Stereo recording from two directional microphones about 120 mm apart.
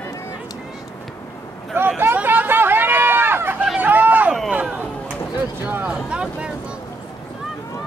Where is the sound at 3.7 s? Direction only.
15° right (ahead or behind).